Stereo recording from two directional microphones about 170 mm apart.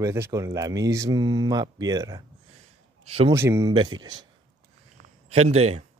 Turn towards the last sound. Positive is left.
turn(degrees=-40)  # may be behind; listen again after turning